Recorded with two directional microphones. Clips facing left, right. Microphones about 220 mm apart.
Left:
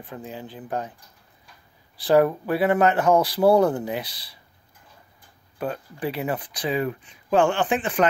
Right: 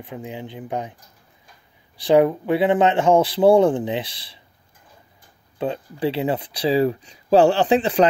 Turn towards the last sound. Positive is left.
turn(degrees=-35)  # may be behind; listen again after turning